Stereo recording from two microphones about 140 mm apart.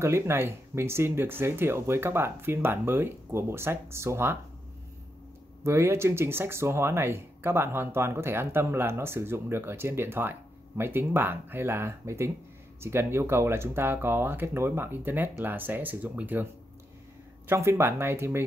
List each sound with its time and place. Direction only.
0.0 s speech: 20° right (ahead or behind)
5.6 s speech: 20° right (ahead or behind)
17.5 s speech: 20° right (ahead or behind)